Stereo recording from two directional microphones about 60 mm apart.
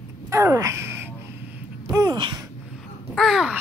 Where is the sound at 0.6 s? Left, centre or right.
Right.